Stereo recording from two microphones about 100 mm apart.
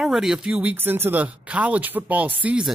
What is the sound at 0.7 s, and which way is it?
Speech, 20° right (ahead or behind).